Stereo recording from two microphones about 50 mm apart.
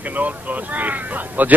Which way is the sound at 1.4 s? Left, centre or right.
Right.